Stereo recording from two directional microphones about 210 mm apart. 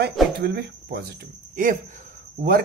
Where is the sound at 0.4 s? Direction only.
50° right (ahead or behind).